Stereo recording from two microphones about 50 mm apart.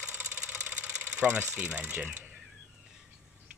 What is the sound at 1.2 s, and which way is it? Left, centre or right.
Speech, right.